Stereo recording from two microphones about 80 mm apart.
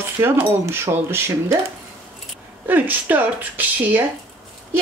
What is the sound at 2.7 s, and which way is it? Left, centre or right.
Speech, right.